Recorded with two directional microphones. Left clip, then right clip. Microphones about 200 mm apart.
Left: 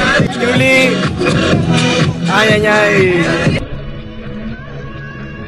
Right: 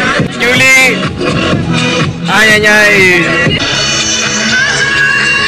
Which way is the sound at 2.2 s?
Centre (ahead or behind).